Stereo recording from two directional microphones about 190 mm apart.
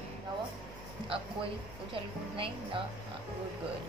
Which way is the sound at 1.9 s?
25° right (ahead or behind).